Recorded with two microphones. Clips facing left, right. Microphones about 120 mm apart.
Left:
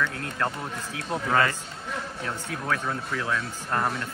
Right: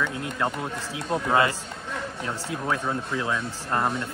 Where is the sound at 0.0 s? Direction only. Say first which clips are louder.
Right 1 dB; 15° right (ahead or behind).